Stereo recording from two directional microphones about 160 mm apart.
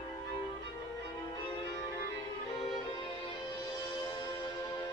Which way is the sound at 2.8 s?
30° left (ahead or behind).